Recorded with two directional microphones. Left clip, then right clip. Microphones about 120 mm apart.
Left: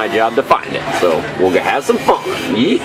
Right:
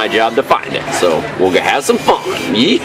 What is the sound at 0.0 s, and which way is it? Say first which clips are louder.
A man's voice: right 1 dB; 30° right (ahead or behind).